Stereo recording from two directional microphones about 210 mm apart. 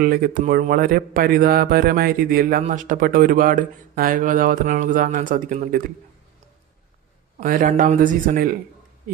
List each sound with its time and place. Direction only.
0.0 s speech: 45° right (ahead or behind)
7.3 s speech: 40° right (ahead or behind)